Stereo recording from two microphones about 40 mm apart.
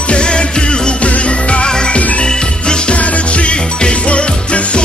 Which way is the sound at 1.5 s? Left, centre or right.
Left.